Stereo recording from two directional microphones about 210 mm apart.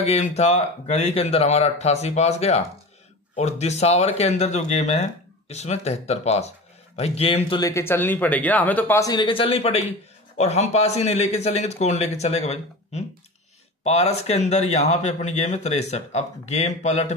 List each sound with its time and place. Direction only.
0.0 s speech: 30° left (ahead or behind)